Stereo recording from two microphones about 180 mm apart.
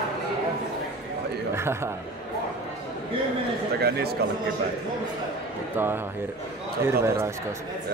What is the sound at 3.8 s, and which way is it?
Speech, 60° right (ahead or behind).